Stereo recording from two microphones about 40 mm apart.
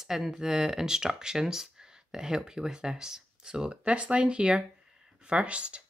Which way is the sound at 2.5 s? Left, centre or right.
Centre.